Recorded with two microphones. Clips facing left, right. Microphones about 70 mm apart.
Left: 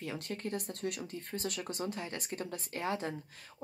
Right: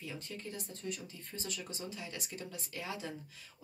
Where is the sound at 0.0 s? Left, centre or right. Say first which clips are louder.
Left 6 dB; left.